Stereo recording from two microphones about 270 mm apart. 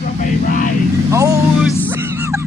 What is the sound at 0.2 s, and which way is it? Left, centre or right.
Vehicle, left.